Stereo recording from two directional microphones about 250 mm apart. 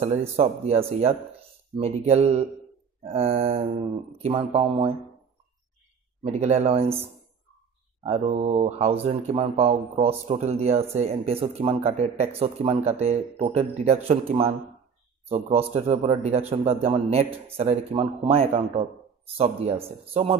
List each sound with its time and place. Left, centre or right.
0.4 s a man's voice: right
6.2 s a man's voice: right
8.0 s a man's voice: right